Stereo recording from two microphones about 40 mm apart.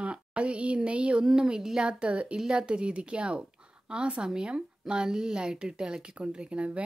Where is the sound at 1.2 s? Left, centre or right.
Centre.